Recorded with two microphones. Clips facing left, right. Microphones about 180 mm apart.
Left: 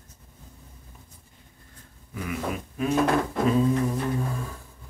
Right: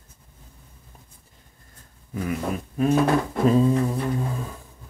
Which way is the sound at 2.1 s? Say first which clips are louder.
Right 4 dB; 40° right (ahead or behind).